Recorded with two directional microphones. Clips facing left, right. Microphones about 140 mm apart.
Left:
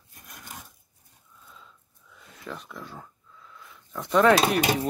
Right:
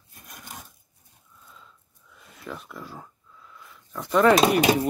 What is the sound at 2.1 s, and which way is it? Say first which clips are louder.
Speech: right 1 dB; 5° right (ahead or behind).